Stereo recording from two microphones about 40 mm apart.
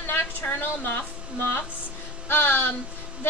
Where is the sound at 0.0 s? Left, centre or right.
Left.